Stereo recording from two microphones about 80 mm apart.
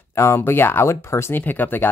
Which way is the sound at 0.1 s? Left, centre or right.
Left.